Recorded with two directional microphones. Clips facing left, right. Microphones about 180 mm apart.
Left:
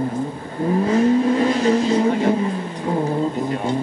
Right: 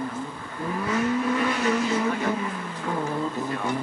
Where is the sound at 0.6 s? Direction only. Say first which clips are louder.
Left 9 dB; 30° left (ahead or behind).